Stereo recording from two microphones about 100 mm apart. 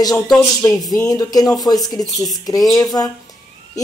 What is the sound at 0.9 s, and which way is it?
A woman's voice, 35° left (ahead or behind).